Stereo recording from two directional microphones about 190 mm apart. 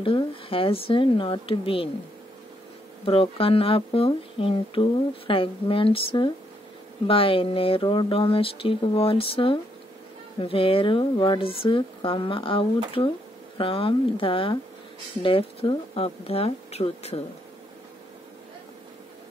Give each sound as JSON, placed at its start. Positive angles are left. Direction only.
{"t": 0.0, "sound": "speech", "side_deg": 30}
{"t": 3.1, "sound": "speech", "side_deg": 30}